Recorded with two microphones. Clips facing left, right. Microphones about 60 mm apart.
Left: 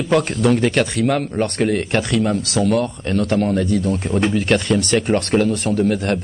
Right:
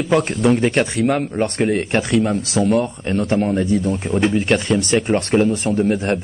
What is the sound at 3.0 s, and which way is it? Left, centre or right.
Speech, right.